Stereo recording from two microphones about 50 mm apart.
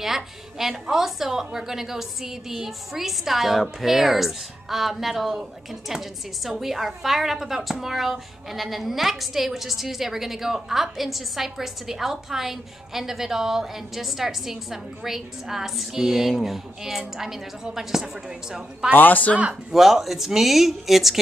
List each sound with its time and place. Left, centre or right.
0.0 s a woman's voice: centre
18.9 s speech: left
19.7 s a woman's voice: centre